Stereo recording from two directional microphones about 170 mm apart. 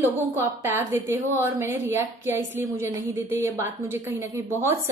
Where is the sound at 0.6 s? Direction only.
15° right (ahead or behind).